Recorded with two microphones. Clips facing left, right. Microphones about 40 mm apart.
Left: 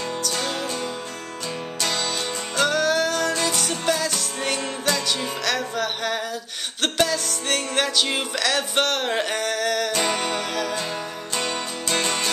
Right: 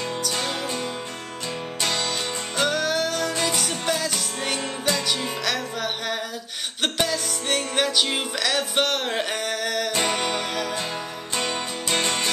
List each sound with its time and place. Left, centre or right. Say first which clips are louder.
0.2 s music: left 1 dB; centre